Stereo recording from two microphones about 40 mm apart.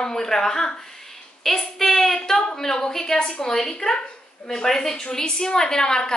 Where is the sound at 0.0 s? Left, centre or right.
Centre.